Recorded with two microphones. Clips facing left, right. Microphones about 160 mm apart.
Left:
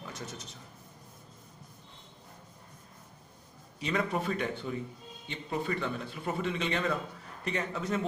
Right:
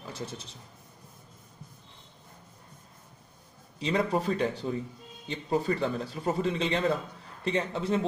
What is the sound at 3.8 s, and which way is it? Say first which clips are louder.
A man's voice: right 4 dB; 30° right (ahead or behind).